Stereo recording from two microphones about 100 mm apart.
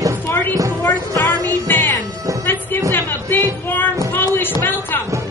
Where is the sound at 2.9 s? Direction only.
20° left (ahead or behind).